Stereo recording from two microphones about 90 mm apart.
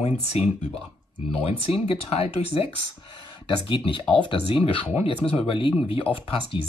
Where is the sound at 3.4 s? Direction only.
70° left (ahead or behind); by 4.8 s 85° left.